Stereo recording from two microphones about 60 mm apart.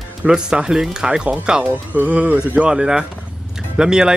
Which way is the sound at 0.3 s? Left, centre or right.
Centre.